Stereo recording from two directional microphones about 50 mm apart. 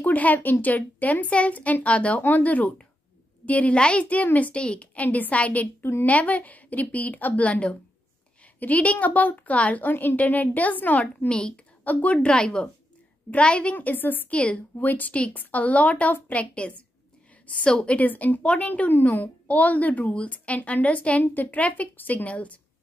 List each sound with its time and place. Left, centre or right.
0.0 s a woman's voice: left
2.2 s a woman's voice: left
5.8 s a woman's voice: left
6.0 s a woman's voice: left
11.2 s a woman's voice: centre
11.8 s speech: left
13.7 s a woman's voice: left
14.3 s speech: left
14.8 s a woman's voice: left; by 17.9 s centre
17.9 s a woman's voice: left
18.4 s speech: centre
18.7 s speech: left
21.2 s a woman's voice: left